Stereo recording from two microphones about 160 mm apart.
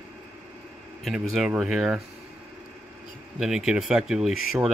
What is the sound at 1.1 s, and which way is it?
Speech, centre (ahead or behind).